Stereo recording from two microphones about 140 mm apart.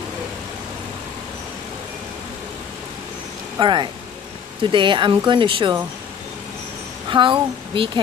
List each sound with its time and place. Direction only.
3.5 s speech: 35° right (ahead or behind)
7.1 s speech: 35° right (ahead or behind)